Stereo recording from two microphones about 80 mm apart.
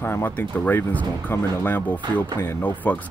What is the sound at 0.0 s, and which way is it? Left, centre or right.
Speech, left.